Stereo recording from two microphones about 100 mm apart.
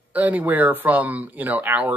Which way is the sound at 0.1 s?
15° right (ahead or behind).